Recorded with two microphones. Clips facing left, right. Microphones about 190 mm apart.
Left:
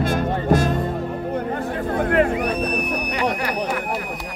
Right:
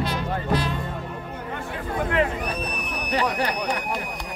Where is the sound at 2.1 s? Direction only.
55° left (ahead or behind).